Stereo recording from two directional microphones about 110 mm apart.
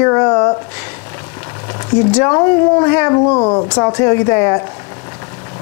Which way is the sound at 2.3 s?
25° left (ahead or behind).